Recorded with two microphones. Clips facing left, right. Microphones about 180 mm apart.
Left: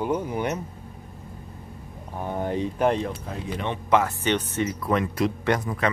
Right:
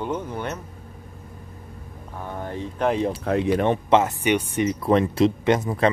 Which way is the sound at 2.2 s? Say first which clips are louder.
Left 4 dB; 20° left (ahead or behind).